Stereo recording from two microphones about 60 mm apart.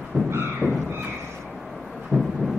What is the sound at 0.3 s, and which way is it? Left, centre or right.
Beatboxing, right.